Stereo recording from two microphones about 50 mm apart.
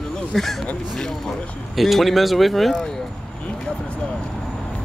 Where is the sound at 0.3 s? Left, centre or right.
Centre.